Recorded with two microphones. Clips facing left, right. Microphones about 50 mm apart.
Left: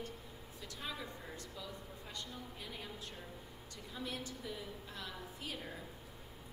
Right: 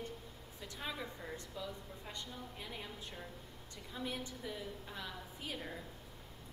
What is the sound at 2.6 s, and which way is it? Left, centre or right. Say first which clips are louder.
Speech: right 2 dB; centre.